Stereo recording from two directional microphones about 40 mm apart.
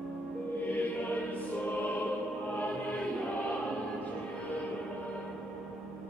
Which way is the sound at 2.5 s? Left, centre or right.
Left.